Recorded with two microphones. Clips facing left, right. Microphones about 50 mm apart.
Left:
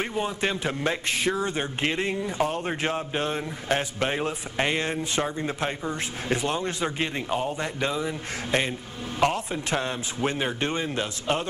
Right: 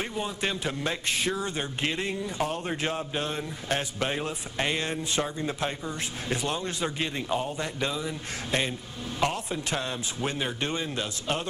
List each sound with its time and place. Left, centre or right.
0.0 s speech: left
7.5 s speech: left